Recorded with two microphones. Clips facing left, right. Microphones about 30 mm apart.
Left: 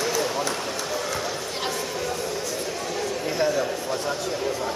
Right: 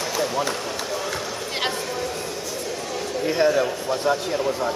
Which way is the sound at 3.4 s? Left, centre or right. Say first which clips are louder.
Right 4 dB; right.